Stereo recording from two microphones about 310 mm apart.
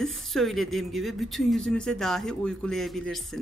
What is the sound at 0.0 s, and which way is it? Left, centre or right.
Speech, centre.